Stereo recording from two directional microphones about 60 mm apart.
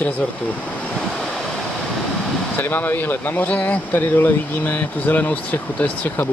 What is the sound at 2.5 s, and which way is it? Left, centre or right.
Speech, left.